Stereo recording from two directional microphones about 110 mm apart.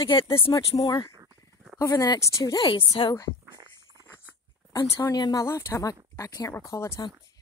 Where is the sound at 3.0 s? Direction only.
50° left (ahead or behind).